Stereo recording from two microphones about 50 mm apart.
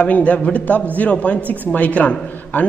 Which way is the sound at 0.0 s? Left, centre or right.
Left.